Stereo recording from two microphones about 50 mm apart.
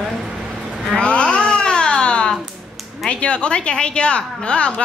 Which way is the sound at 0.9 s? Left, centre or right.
Left.